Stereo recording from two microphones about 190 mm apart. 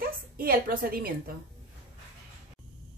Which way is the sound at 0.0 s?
50° right (ahead or behind).